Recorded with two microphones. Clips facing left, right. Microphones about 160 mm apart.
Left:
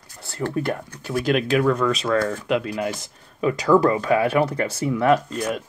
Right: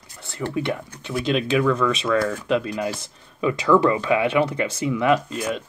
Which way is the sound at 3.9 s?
30° left (ahead or behind).